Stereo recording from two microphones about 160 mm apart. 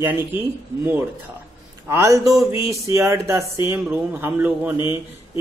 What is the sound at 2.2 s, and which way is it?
Speech, centre (ahead or behind).